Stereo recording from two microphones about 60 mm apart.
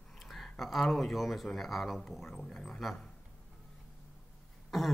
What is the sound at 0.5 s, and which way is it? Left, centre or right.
Speech, centre.